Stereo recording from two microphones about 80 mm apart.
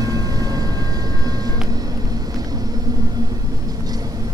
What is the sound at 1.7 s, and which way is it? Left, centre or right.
Vehicle, right.